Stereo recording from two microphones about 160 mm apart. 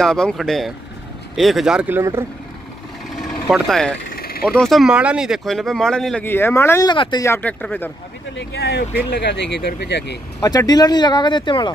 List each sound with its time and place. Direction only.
0.0 s speech: 5° left (ahead or behind); by 2.2 s 15° right (ahead or behind)
3.2 s vehicle: centre (ahead or behind)
4.1 s vehicle: 70° left (ahead or behind)
4.5 s speech: 5° left (ahead or behind)
6.9 s speech: 30° left (ahead or behind)
7.2 s speech: 10° left (ahead or behind)
8.4 s speech: 90° left
10.4 s speech: 25° left (ahead or behind)